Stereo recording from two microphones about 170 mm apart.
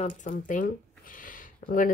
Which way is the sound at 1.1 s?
55° left (ahead or behind).